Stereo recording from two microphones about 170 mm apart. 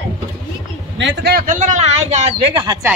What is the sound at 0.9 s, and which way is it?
Speech, 80° right.